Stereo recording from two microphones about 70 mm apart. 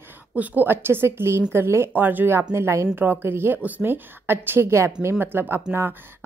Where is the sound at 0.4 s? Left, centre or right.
Right.